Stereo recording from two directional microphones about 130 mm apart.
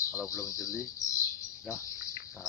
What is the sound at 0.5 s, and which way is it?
Speech, 25° left (ahead or behind).